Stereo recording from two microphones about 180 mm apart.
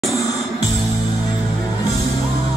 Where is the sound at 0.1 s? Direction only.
20° left (ahead or behind).